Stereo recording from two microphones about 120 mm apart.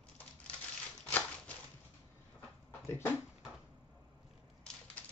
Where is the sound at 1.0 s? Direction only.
15° left (ahead or behind).